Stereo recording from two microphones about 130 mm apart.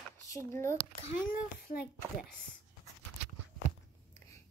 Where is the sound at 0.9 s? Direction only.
90° left.